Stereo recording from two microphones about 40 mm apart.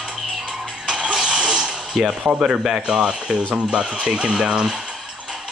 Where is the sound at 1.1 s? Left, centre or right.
Centre.